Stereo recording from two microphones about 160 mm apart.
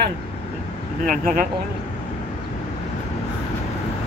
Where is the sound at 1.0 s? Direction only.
55° right (ahead or behind).